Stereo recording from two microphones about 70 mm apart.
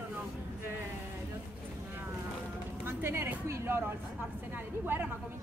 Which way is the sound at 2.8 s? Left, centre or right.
Right.